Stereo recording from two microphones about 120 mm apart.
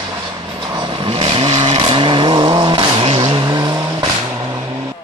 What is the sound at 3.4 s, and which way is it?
Vehicle, 40° right (ahead or behind).